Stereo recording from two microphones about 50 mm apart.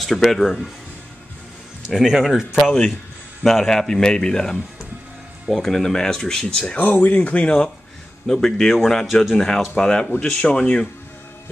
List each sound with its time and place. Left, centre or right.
0.0 s speech: centre
2.0 s speech: centre
2.6 s speech: centre
6.8 s speech: left; by 7.7 s centre
8.3 s speech: centre
9.0 s speech: centre
9.3 s speech: centre
10.4 s speech: left